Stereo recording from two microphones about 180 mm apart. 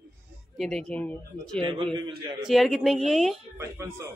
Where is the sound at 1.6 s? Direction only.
30° right (ahead or behind).